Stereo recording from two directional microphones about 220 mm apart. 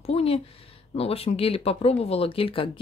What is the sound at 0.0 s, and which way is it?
A woman's voice, 25° left (ahead or behind).